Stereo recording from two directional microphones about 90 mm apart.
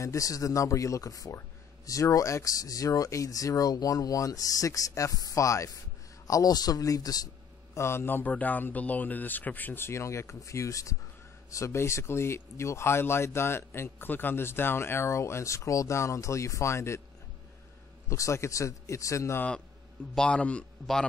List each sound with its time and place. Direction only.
0.0 s speech: 40° left (ahead or behind)
7.7 s speech: 30° left (ahead or behind)
18.1 s speech: 35° left (ahead or behind)
20.2 s a man's voice: 15° left (ahead or behind)